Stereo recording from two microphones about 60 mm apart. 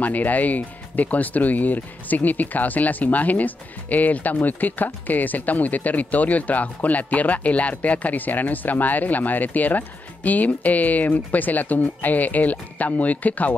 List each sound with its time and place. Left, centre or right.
0.0 s speech: left